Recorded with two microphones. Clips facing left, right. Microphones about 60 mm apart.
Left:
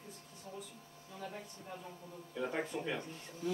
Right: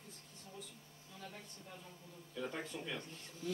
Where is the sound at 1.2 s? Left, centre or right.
Left.